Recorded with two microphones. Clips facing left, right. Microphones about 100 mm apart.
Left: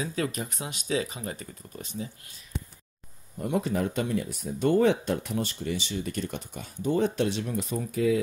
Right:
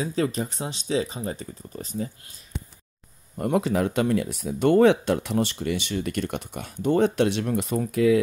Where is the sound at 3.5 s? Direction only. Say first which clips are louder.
Right 4 dB; 90° right.